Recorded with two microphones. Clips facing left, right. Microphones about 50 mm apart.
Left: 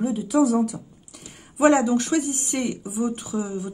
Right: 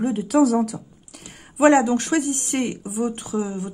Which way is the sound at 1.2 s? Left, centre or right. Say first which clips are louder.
Right 2 dB; right.